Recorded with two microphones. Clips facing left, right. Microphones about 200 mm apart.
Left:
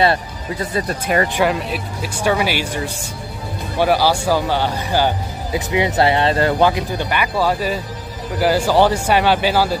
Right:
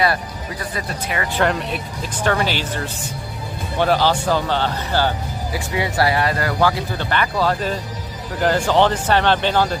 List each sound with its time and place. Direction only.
0.0 s speech: 25° left (ahead or behind)
1.3 s speech: 5° left (ahead or behind)